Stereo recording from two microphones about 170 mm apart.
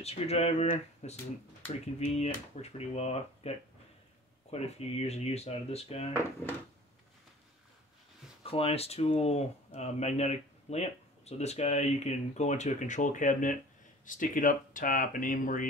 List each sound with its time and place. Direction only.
0.0 s speech: 35° left (ahead or behind)
8.5 s speech: 35° left (ahead or behind); by 15.7 s 50° left (ahead or behind)